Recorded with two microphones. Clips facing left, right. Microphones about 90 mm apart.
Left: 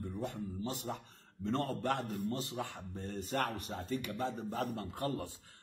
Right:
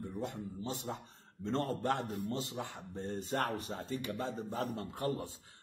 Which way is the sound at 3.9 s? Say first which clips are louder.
Left 2 dB; 20° right (ahead or behind).